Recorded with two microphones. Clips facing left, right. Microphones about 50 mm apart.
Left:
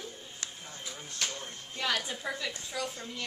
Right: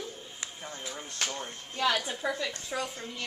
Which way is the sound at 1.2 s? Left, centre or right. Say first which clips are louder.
Right 2 dB; right.